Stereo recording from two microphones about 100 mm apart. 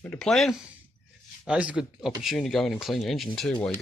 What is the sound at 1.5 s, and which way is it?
Speech, 10° right (ahead or behind).